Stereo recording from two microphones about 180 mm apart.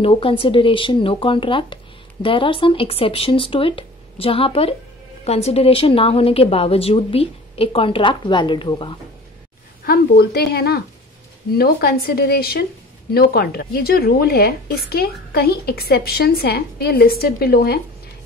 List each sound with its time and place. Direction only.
0.0 s a woman's voice: 30° left (ahead or behind)
9.8 s speech: 60° left (ahead or behind)